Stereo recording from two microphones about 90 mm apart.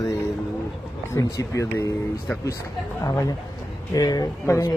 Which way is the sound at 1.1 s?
35° left (ahead or behind).